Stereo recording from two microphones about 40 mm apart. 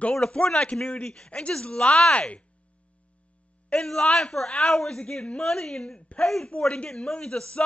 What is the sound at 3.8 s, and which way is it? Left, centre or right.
A woman's voice, centre.